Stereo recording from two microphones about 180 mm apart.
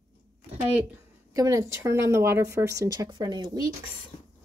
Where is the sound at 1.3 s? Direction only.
20° right (ahead or behind).